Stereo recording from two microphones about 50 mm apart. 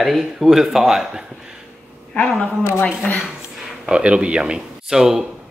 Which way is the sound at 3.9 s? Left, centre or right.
Right.